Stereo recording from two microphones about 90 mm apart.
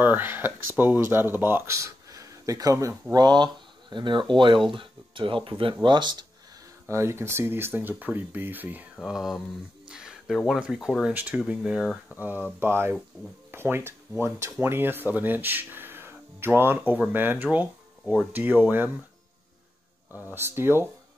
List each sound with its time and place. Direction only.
0.0 s speech: 20° right (ahead or behind)
1.8 s a sound: 40° right (ahead or behind)
3.1 s speech: 50° right (ahead or behind)
6.9 s speech: 30° right (ahead or behind)
9.0 s speech: 5° right (ahead or behind)
9.8 s a sound: 5° right (ahead or behind)
10.6 s speech: 5° right (ahead or behind)
11.1 s speech: 15° right (ahead or behind)
12.2 s speech: 20° right (ahead or behind)
20.2 s speech: 25° right (ahead or behind)